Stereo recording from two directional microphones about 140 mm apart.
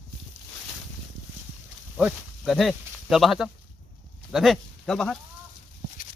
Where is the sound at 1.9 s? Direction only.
5° right (ahead or behind).